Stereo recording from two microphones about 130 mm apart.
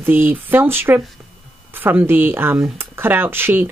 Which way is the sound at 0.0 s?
15° right (ahead or behind).